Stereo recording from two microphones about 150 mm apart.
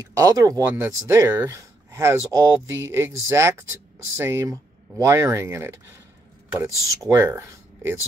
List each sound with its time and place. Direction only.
0.0 s speech: 25° right (ahead or behind)